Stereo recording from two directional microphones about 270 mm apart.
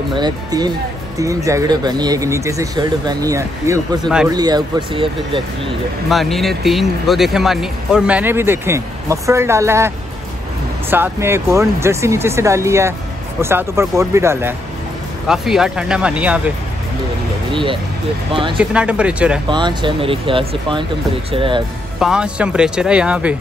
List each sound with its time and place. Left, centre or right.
0.1 s speech: centre
6.0 s speech: centre
17.5 s speech: centre
18.6 s speech: centre
19.5 s speech: centre
22.0 s speech: centre